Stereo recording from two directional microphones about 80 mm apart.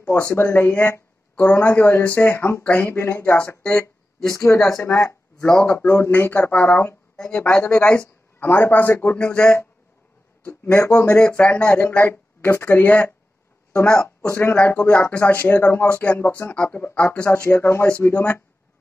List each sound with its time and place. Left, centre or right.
0.1 s speech: left; by 3.8 s centre
4.3 s speech: left
7.5 s speech: centre
8.4 s speech: left
10.4 s speech: left
11.1 s speech: centre
14.3 s speech: left
17.5 s speech: left